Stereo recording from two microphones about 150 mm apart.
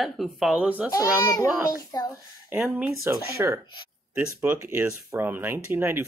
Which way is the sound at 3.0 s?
20° right (ahead or behind).